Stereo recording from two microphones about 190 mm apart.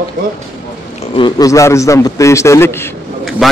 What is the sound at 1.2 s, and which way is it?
A man's voice, 20° left (ahead or behind).